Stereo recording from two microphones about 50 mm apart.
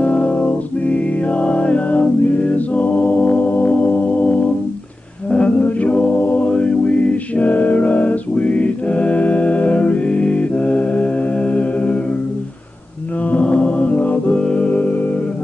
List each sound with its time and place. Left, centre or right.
0.0 s music: left
5.3 s a capella: left
13.2 s mantra: left
14.4 s music: left